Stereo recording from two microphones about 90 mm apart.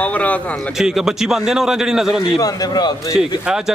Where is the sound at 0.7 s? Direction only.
5° right (ahead or behind).